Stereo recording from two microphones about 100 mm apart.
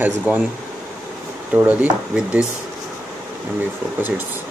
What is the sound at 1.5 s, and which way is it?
Speech, 15° right (ahead or behind).